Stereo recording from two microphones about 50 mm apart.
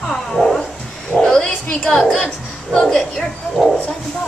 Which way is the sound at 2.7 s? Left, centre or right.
Centre.